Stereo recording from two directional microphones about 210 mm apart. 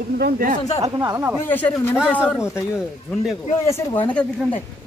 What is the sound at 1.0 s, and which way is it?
Speech, 10° right (ahead or behind).